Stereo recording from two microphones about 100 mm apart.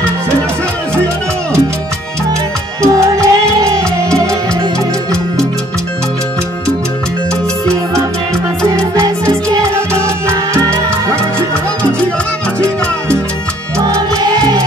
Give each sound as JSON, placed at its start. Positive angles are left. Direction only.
{"t": 3.2, "sound": "music", "side_deg": -30}
{"t": 8.7, "sound": "music", "side_deg": -30}
{"t": 12.5, "sound": "music", "side_deg": 10}
{"t": 13.8, "sound": "music", "side_deg": -45}